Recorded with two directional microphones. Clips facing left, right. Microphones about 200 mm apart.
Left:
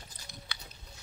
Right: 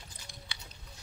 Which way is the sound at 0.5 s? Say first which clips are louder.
Left 2 dB; 30° right (ahead or behind).